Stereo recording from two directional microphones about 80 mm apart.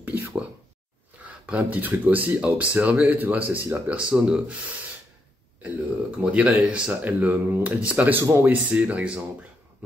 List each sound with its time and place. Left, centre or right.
0.0 s a sound: right
1.4 s speech: centre
8.2 s speech: right
8.5 s speech: centre